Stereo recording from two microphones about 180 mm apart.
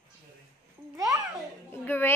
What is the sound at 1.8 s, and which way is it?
Speech, 10° left (ahead or behind).